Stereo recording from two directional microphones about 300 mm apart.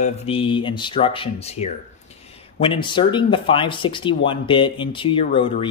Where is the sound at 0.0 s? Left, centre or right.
Centre.